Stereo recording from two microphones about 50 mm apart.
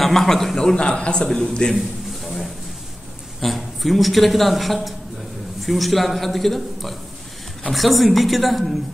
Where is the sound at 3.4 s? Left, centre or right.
Centre.